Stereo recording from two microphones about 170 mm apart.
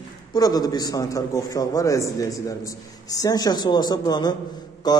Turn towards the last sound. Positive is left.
turn(degrees=25)  # may be behind; listen again after turning